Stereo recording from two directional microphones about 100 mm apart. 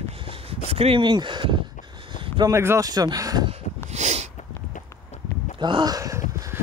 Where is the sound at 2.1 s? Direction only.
60° right (ahead or behind).